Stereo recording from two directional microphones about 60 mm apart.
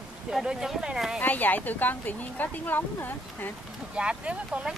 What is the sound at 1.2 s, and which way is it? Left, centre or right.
Speech, left.